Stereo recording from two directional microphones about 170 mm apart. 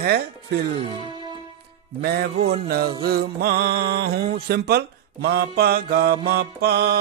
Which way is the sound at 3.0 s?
65° right (ahead or behind).